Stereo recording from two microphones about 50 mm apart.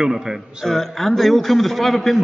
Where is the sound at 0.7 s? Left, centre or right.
Centre.